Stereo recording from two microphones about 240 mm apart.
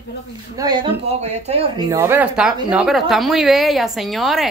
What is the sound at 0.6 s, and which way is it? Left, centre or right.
Speech, centre.